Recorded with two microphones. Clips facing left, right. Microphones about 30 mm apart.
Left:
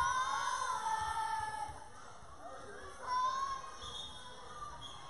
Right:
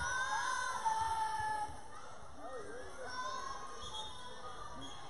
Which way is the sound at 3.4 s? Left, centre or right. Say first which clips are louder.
Left 5 dB; centre.